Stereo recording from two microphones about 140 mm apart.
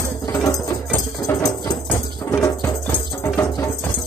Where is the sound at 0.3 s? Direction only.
25° left (ahead or behind).